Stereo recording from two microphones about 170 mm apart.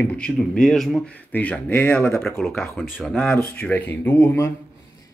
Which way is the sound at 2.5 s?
15° left (ahead or behind).